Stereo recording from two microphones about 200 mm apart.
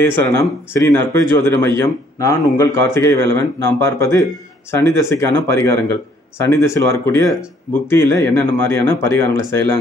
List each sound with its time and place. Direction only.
0.1 s speech: 15° left (ahead or behind)
3.3 s speech: 60° right (ahead or behind)
3.8 s speech: 15° left (ahead or behind)